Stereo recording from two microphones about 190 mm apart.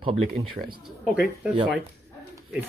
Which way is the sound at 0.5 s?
50° right (ahead or behind).